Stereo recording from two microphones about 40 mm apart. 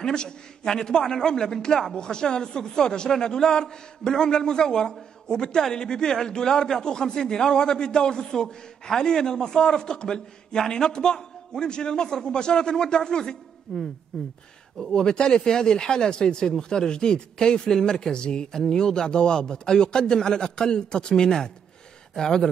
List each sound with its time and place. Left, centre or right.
0.0 s a man's voice: centre